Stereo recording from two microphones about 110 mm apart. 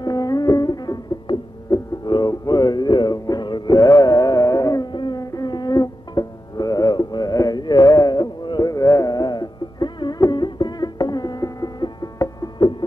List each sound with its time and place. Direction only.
0.0 s music: 35° left (ahead or behind)